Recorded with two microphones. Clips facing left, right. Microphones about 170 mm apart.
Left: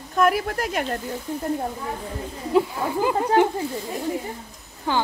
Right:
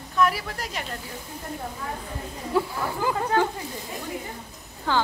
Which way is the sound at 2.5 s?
20° left (ahead or behind).